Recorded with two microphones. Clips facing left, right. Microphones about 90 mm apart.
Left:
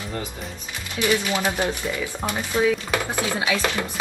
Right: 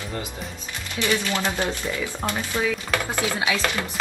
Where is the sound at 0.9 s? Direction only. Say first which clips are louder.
Left 2 dB; 15° left (ahead or behind).